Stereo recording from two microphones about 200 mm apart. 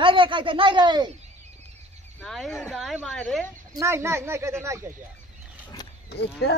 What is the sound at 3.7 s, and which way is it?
Speech, 15° right (ahead or behind).